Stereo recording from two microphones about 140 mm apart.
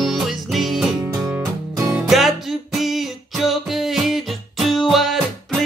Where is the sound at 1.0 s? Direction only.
15° right (ahead or behind).